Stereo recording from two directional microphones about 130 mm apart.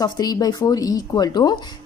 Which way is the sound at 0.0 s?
30° left (ahead or behind).